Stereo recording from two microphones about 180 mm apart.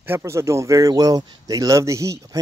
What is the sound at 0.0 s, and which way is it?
Speech, 15° right (ahead or behind).